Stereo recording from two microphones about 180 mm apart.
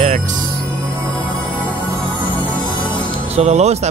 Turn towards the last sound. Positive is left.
turn(degrees=-40)  # may be behind; listen again after turning